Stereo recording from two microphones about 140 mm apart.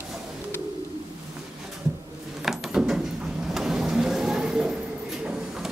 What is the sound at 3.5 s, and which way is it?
Vehicle, 5° right (ahead or behind).